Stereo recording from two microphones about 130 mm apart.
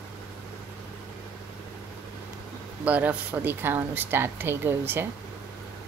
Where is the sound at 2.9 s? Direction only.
10° right (ahead or behind).